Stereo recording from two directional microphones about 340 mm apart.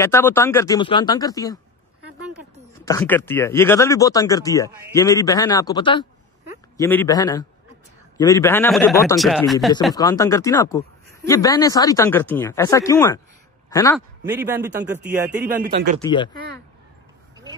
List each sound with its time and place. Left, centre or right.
0.0 s speech: centre
2.8 s a man's voice: centre
14.2 s a man's voice: centre
15.7 s speech: right
16.0 s speech: centre